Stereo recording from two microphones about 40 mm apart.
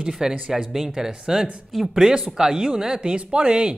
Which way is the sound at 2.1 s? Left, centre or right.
Centre.